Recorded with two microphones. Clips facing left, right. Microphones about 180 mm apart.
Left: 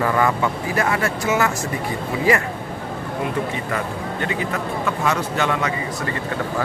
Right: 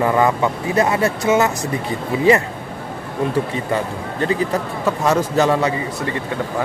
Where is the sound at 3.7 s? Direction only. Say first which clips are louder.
Right 3 dB; 35° right (ahead or behind).